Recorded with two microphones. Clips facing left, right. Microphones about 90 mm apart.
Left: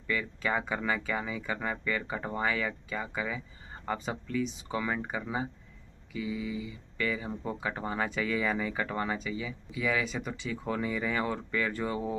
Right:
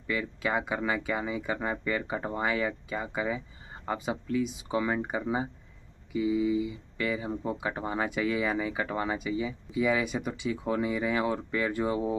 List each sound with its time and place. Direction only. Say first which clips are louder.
0.0 s speech: right 1 dB; 15° right (ahead or behind)